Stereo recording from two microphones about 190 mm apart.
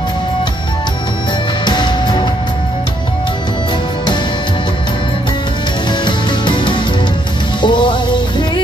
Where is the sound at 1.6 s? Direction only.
25° left (ahead or behind).